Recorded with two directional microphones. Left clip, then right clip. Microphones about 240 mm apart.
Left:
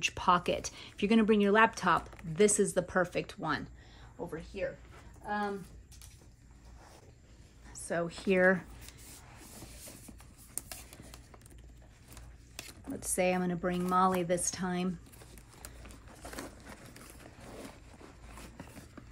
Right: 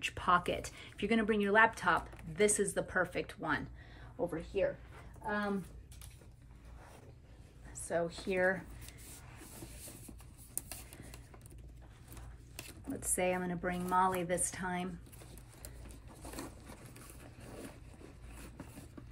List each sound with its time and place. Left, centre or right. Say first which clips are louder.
0.0 s speech: left 3 dB; centre
4.3 s a woman's voice: right 2 dB; centre
7.9 s a woman's voice: left 4 dB; left
8.6 s a sound: left 2 dB; centre
12.5 s speech: left 2 dB; centre
15.1 s a sound: left 2 dB; centre